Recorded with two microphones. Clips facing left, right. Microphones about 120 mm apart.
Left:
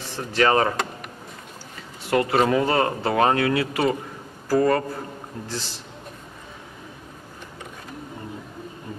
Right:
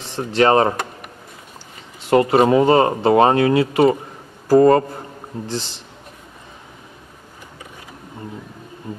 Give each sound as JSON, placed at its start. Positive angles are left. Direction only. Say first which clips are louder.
{"t": 0.0, "sound": "speech", "louder": "right 5 dB", "side_deg": -25}
{"t": 2.0, "sound": "a man's voice", "louder": "right 6 dB", "side_deg": -20}